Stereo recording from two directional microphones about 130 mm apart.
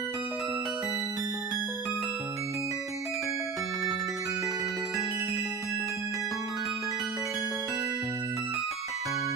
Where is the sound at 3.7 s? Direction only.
Centre (ahead or behind).